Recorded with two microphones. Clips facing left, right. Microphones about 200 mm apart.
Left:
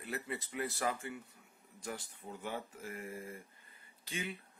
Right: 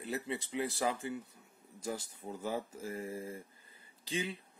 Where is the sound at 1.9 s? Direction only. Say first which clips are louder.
Right 4 dB; 35° right (ahead or behind).